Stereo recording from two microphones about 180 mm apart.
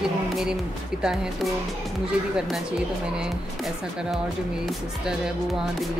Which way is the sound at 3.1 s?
5° right (ahead or behind).